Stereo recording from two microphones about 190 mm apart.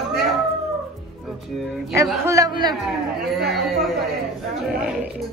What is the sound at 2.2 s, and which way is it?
Speech, 15° right (ahead or behind).